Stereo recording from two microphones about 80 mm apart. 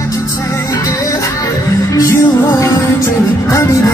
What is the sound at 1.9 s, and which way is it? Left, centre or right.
Music, left.